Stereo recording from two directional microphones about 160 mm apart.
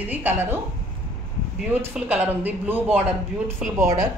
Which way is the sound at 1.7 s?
10° right (ahead or behind).